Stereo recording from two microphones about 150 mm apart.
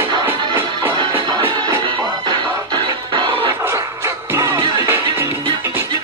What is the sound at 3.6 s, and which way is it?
Music, 20° right (ahead or behind).